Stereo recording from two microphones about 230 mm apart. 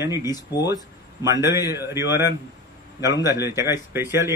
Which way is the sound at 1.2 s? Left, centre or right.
Centre.